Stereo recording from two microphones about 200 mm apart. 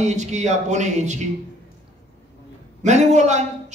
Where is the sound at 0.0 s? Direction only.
35° right (ahead or behind).